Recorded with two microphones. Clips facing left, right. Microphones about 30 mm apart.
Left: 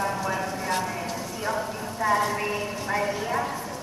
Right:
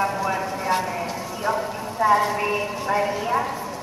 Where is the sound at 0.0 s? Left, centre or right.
Centre.